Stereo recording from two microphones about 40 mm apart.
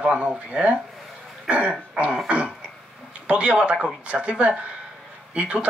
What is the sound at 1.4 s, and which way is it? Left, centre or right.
Throat clearing, right.